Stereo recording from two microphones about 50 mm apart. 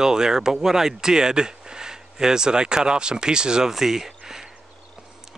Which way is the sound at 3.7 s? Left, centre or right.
Centre.